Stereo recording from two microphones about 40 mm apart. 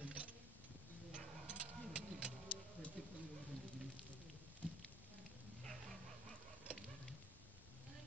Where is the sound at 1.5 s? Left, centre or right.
Right.